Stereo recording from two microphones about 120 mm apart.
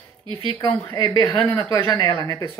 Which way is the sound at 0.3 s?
45° right (ahead or behind).